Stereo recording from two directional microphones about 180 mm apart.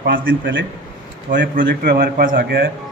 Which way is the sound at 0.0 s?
90° right.